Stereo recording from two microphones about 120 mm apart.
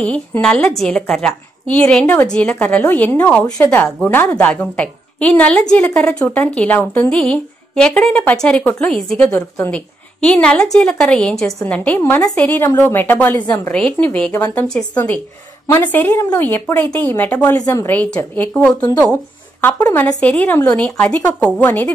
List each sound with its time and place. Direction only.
0.0 s a woman's voice: 10° left (ahead or behind)
12.0 s a woman's voice: 25° left (ahead or behind)
17.6 s a woman's voice: 30° left (ahead or behind)
17.8 s a woman's voice: 15° left (ahead or behind)